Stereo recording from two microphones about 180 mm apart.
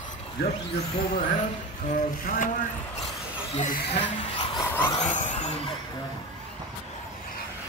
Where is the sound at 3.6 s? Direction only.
35° left (ahead or behind).